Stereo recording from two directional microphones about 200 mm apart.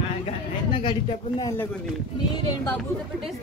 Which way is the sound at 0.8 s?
20° left (ahead or behind).